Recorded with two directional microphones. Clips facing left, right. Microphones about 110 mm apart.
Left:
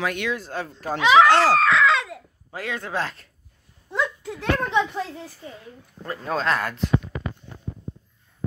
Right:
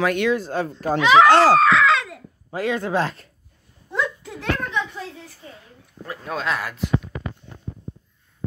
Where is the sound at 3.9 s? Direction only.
25° left (ahead or behind).